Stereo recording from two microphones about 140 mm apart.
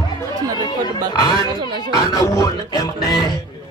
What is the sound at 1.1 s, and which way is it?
A man's voice, 30° left (ahead or behind).